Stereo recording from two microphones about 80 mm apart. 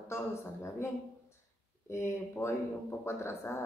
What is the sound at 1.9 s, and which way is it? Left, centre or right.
A man's voice, left.